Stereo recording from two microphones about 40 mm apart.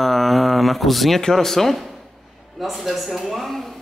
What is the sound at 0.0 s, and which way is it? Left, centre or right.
Speech, centre.